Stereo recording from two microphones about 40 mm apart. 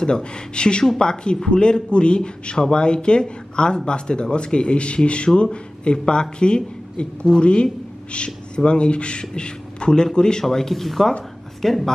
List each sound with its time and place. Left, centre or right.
0.0 s a man's voice: left
10.4 s speech: centre